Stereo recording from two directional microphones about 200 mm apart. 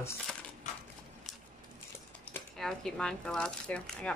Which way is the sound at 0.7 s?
35° left (ahead or behind).